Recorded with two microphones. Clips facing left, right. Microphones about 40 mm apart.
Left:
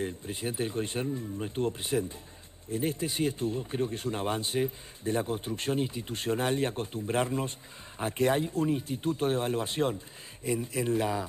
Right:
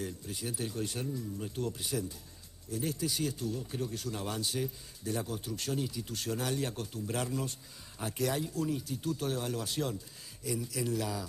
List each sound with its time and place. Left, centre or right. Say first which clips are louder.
0.0 s speech: left 5 dB; left